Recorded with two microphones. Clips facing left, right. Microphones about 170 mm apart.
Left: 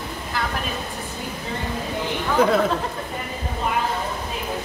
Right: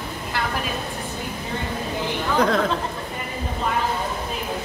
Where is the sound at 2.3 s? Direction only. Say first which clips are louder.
Left 2 dB; 5° left (ahead or behind).